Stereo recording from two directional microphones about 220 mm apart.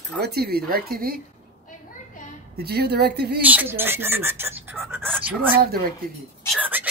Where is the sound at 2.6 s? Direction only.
45° right (ahead or behind).